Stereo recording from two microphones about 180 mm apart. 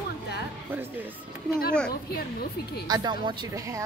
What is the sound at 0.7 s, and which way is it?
Speech, 10° right (ahead or behind).